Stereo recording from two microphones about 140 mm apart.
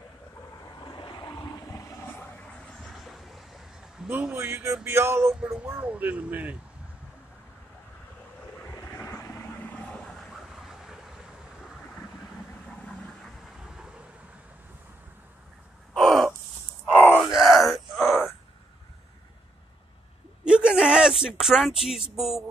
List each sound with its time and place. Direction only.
0.8 s vehicle: 35° left (ahead or behind); by 4.1 s centre (ahead or behind)
4.1 s a man's voice: 5° right (ahead or behind)
4.4 s speech: 15° right (ahead or behind)
8.7 s vehicle: 15° left (ahead or behind); by 11.0 s 5° right (ahead or behind)
12.6 s vehicle: 10° left (ahead or behind)
15.9 s caw: centre (ahead or behind)
16.9 s groan: 15° left (ahead or behind)
17.4 s wail: centre (ahead or behind)
20.4 s a sound: 5° right (ahead or behind)